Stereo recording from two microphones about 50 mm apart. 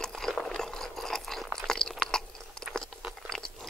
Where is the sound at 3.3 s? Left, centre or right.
Centre.